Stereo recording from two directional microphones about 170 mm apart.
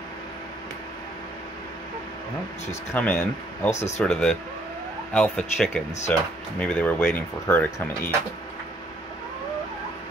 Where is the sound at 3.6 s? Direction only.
40° left (ahead or behind).